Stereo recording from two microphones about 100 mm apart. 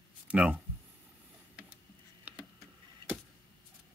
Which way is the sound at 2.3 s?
15° right (ahead or behind).